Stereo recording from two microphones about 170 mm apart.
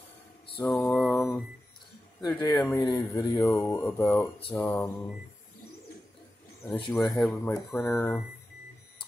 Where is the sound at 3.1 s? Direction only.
20° left (ahead or behind).